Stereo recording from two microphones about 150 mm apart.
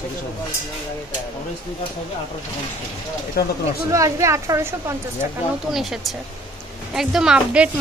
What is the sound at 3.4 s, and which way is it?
Speech, 90° left.